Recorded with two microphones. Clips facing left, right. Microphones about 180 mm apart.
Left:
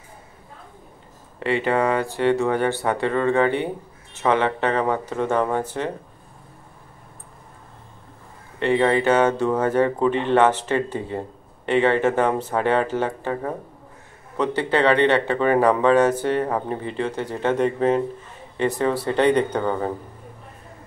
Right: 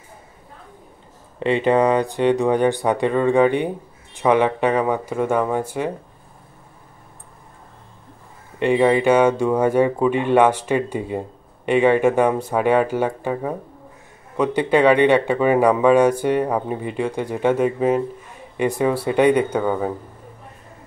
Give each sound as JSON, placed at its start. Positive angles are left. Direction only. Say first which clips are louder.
{"t": 1.4, "sound": "speech", "louder": "right 4 dB", "side_deg": -20}
{"t": 8.5, "sound": "speech", "louder": "right 3 dB", "side_deg": -15}